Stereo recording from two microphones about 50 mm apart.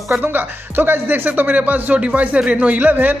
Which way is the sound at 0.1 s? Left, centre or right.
Right.